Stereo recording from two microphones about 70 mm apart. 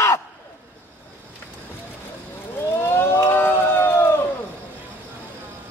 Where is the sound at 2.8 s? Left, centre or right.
Left.